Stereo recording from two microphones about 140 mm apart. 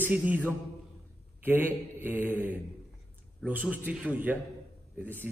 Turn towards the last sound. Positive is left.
turn(degrees=-5)  # may be behind; listen again after turning